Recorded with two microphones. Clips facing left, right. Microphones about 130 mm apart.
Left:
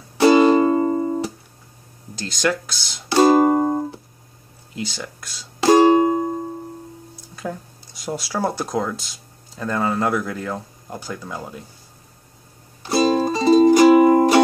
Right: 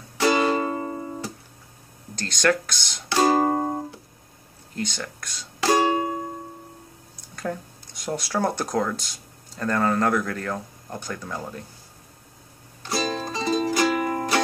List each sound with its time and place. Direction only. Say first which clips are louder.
0.2 s music: left 8 dB; 30° left (ahead or behind)
2.1 s speech: even; 5° left (ahead or behind)
3.2 s music: left 6 dB; 25° left (ahead or behind)
4.7 s speech: left 1 dB; 5° left (ahead or behind)
5.6 s music: left 8 dB; 25° left (ahead or behind)
7.3 s speech: even; 5° left (ahead or behind)
12.8 s music: left 9 dB; 20° left (ahead or behind)